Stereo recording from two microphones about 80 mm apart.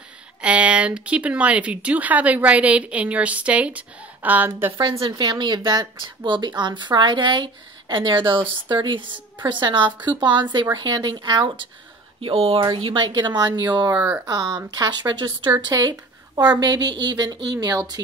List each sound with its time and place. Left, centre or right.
0.4 s a woman's voice: centre
5.1 s speech: right
10.0 s speech: right
12.7 s a woman's voice: right
13.9 s a woman's voice: right
14.2 s a woman's voice: right
15.5 s a woman's voice: right